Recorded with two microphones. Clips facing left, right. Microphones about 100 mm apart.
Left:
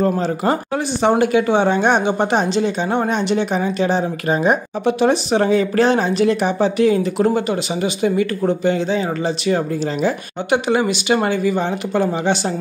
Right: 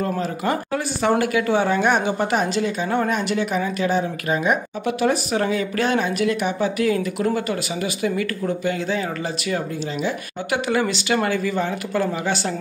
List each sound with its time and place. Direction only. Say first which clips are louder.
0.0 s speech: left 6 dB; 30° left (ahead or behind)